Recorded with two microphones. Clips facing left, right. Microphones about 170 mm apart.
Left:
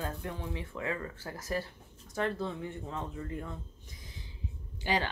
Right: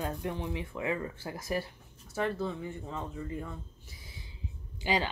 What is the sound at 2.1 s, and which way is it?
Speech, 5° right (ahead or behind).